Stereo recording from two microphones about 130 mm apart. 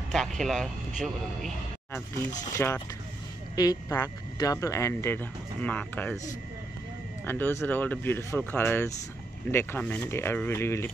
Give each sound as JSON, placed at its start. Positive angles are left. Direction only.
{"t": 0.1, "sound": "a sound", "side_deg": 5}
{"t": 2.5, "sound": "speech", "side_deg": 25}
{"t": 7.2, "sound": "speech", "side_deg": 15}